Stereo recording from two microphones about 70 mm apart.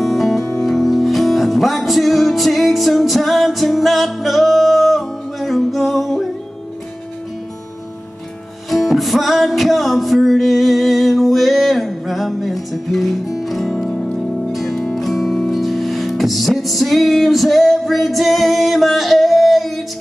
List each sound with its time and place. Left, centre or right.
0.0 s music: centre
8.6 s music: centre